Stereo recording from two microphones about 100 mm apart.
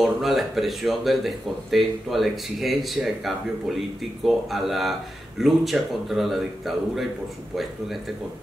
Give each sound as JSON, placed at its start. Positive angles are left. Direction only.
{"t": 0.0, "sound": "speech", "side_deg": 0}